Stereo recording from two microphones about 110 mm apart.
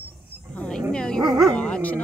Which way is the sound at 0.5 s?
10° left (ahead or behind).